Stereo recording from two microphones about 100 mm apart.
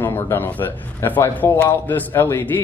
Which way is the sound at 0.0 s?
20° left (ahead or behind).